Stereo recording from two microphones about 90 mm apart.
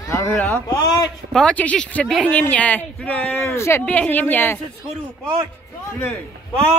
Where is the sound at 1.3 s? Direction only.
10° left (ahead or behind); by 3.8 s 30° left (ahead or behind).